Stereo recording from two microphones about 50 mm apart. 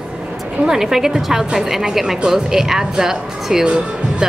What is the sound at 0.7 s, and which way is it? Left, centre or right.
Speech, centre.